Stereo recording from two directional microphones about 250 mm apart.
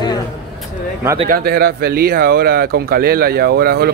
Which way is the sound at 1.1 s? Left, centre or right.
Right.